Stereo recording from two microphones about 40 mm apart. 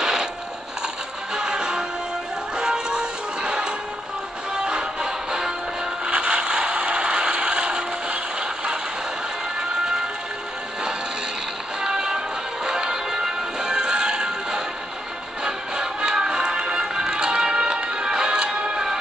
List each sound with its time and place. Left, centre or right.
0.0 s music: centre
1.3 s music: right
6.0 s mechanisms: right
9.6 s music: centre
11.8 s music: right